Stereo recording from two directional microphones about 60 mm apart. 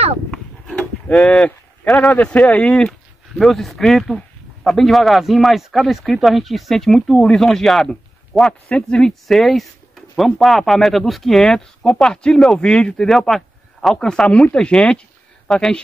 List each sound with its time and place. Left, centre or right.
0.3 s a sound: centre
1.0 s speech: centre
2.1 s speech: left
2.9 s speech: centre
8.6 s speech: centre
9.3 s speech: centre
13.1 s a sound: centre
13.9 s speech: centre
15.5 s speech: centre